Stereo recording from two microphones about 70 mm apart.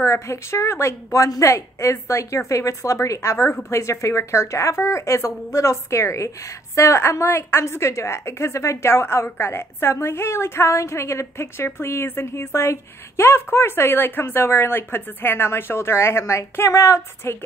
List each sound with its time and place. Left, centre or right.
0.0 s a woman's voice: left